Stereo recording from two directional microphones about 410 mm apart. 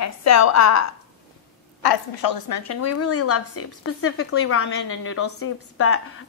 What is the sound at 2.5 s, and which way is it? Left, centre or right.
A woman's voice, left.